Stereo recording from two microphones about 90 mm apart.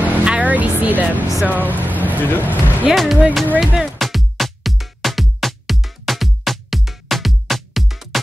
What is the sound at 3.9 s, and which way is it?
Music, centre (ahead or behind).